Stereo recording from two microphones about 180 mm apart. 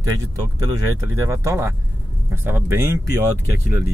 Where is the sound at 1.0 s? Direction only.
15° right (ahead or behind).